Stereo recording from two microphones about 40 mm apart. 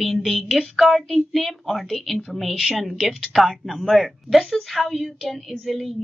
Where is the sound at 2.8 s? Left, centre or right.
Centre.